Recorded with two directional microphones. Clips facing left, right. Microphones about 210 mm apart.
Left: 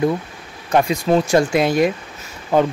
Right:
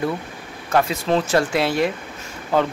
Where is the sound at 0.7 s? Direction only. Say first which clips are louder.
Left 3 dB; 15° left (ahead or behind).